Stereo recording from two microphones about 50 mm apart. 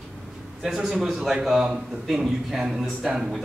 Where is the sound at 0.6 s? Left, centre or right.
Centre.